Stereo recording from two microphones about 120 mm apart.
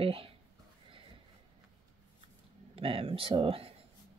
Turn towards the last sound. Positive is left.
turn(degrees=-50)  # may be behind; listen again after turning